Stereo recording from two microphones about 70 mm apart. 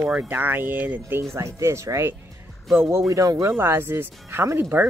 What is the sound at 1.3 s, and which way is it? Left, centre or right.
Speech, right.